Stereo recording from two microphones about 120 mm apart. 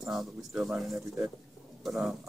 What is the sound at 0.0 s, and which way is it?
Speech, 5° right (ahead or behind).